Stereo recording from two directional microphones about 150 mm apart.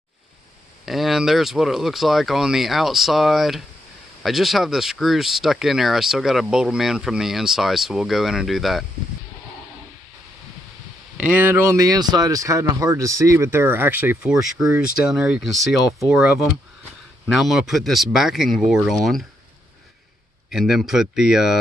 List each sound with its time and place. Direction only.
0.8 s speech: centre (ahead or behind)
11.1 s speech: 10° right (ahead or behind)
20.5 s speech: centre (ahead or behind)